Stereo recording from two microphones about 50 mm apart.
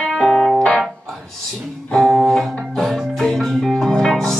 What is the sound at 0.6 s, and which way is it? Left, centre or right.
Music, centre.